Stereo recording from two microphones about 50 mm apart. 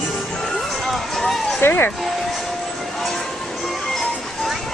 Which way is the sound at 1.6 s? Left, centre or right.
Left.